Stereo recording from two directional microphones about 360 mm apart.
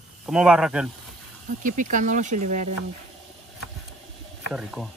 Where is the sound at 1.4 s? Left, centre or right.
Right.